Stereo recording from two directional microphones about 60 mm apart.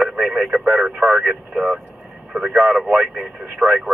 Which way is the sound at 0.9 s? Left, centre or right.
Centre.